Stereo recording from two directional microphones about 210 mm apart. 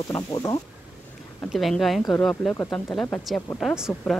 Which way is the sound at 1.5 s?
Centre (ahead or behind).